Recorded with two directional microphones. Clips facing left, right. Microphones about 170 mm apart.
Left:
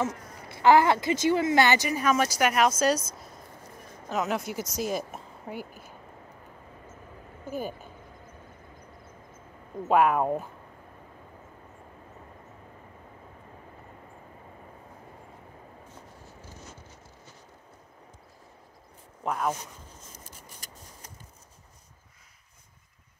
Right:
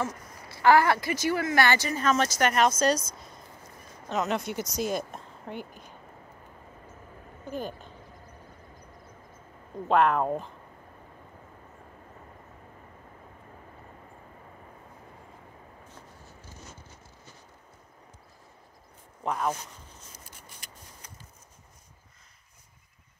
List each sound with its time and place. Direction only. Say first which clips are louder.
0.5 s speech: left 1 dB; 20° left (ahead or behind)
3.1 s a sound: left 1 dB; 5° left (ahead or behind)
4.1 s speech: even; 5° left (ahead or behind)
7.4 s speech: left 1 dB; 10° left (ahead or behind)
9.8 s speech: left 1 dB; 10° left (ahead or behind)
19.2 s speech: even; 5° left (ahead or behind)
20.4 s scissors: left 2 dB; 40° left (ahead or behind)